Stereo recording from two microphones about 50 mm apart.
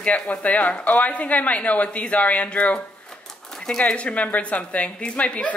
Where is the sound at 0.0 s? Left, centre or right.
Left.